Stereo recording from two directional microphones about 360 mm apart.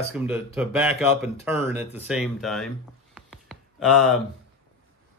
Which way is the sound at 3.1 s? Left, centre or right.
Centre.